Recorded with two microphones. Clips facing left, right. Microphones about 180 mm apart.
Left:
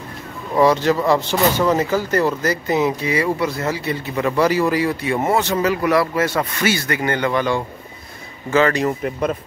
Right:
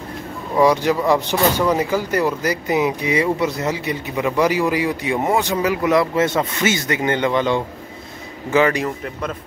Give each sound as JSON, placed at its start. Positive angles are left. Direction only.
{"t": 0.6, "sound": "speech", "side_deg": -15}